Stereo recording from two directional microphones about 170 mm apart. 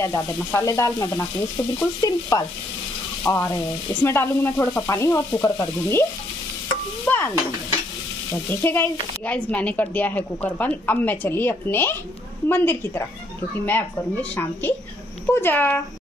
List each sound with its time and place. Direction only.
0.0 s speech: 15° left (ahead or behind)
1.8 s stir: 20° left (ahead or behind)
3.3 s speech: 15° left (ahead or behind)
7.1 s speech: 10° left (ahead or behind)
15.3 s speech: 10° left (ahead or behind)